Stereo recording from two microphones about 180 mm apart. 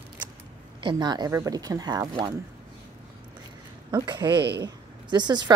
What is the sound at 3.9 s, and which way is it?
Speech, 25° right (ahead or behind).